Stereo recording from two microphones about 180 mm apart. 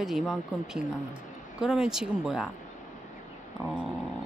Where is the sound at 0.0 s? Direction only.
Centre (ahead or behind).